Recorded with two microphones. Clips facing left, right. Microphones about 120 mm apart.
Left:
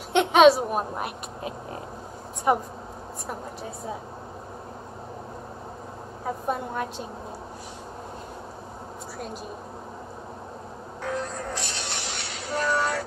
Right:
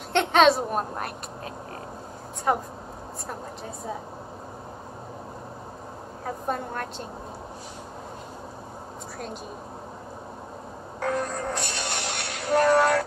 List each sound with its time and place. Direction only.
0.1 s a woman's voice: 5° left (ahead or behind)
6.2 s a woman's voice: 5° left (ahead or behind)
11.0 s music: 55° right (ahead or behind)